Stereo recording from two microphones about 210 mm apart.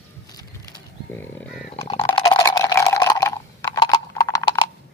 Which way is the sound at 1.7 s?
30° left (ahead or behind).